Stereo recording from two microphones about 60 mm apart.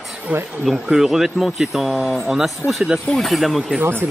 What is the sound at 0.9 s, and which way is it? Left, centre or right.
Speech, centre.